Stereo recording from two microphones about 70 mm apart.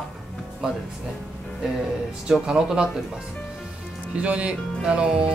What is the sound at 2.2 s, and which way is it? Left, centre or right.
Speech, centre.